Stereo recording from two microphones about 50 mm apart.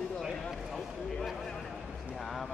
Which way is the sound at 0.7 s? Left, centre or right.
Centre.